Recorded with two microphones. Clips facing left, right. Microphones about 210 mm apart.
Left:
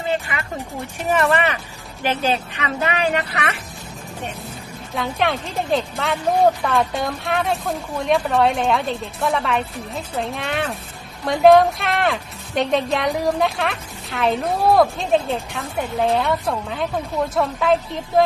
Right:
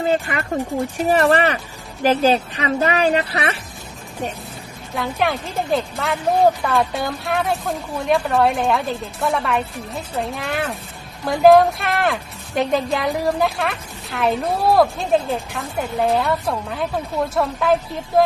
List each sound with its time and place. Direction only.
0.0 s a woman's voice: 40° right (ahead or behind)
4.9 s a woman's voice: centre (ahead or behind)